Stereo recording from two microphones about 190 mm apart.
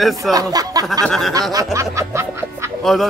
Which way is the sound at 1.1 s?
Centre (ahead or behind).